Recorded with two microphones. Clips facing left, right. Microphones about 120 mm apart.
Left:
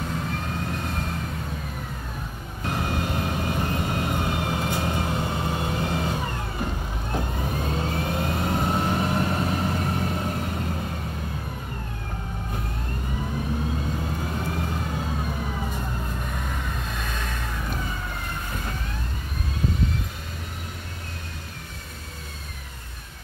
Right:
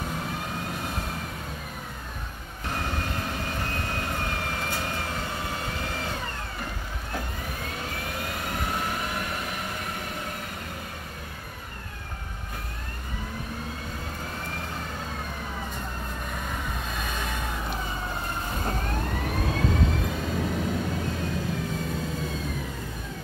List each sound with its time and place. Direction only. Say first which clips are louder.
3.5 s vehicle: left 5 dB; 15° left (ahead or behind)
7.2 s vehicle: left 7 dB; 25° left (ahead or behind)